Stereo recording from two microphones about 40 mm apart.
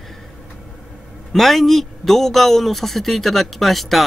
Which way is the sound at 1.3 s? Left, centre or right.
Centre.